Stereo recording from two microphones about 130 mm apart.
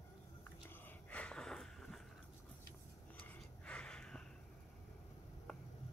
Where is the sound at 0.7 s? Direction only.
10° left (ahead or behind).